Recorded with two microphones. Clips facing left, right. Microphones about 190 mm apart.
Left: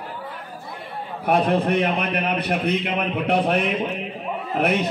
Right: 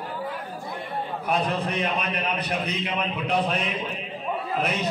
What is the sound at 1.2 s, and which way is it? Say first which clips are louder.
A man's voice: left 8 dB; 60° left (ahead or behind).